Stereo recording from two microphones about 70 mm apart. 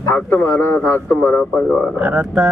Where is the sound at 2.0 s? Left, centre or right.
Centre.